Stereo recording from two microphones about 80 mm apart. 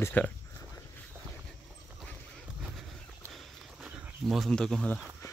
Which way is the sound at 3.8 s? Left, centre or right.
Centre.